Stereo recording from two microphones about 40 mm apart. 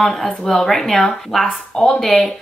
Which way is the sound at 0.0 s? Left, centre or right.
Centre.